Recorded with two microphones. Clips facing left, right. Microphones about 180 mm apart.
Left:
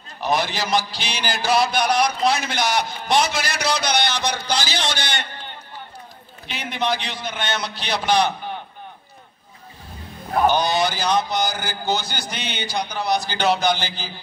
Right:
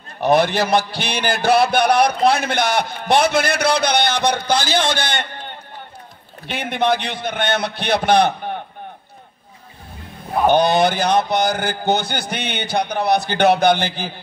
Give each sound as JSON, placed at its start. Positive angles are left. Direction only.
{"t": 0.2, "sound": "speech", "side_deg": -55}
{"t": 10.4, "sound": "speech", "side_deg": -55}